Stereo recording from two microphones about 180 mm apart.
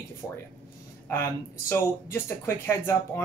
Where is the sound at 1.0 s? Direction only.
15° left (ahead or behind).